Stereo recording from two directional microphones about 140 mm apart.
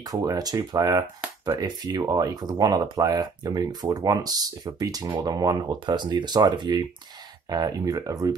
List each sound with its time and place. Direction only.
0.0 s speech: 25° right (ahead or behind)